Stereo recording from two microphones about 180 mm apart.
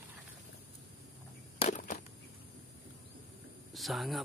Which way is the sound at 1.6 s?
40° left (ahead or behind).